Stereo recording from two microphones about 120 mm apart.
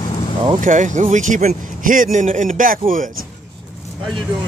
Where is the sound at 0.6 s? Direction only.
90° right.